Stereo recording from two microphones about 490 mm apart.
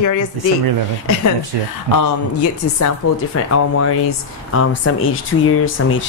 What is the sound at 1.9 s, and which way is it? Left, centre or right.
Speech, left.